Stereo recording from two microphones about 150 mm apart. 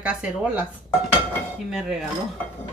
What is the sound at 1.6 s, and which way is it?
Dishes, centre (ahead or behind).